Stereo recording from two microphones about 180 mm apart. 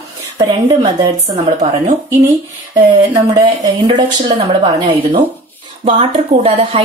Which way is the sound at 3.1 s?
25° right (ahead or behind).